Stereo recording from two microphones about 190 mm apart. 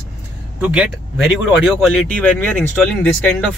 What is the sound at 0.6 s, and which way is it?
Speech, 5° right (ahead or behind).